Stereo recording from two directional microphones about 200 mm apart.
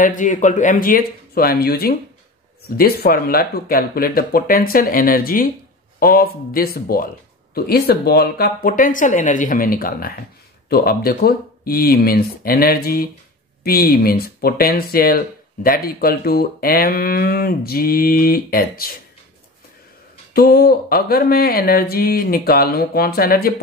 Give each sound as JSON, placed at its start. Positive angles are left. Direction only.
{"t": 0.0, "sound": "speech", "side_deg": 40}
{"t": 20.3, "sound": "speech", "side_deg": 50}